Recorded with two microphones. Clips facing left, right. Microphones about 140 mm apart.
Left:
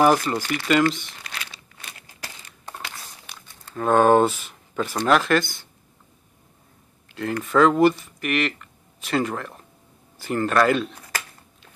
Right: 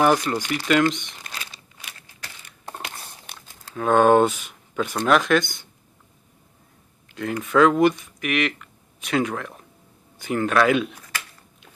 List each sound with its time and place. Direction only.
0.0 s speech: 5° left (ahead or behind)
2.7 s crumpling: 20° right (ahead or behind)
3.7 s speech: centre (ahead or behind)
7.1 s a sound: centre (ahead or behind)
7.4 s speech: centre (ahead or behind)